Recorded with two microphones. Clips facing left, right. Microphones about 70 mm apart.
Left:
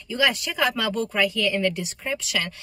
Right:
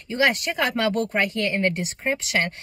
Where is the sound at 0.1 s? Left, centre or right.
Right.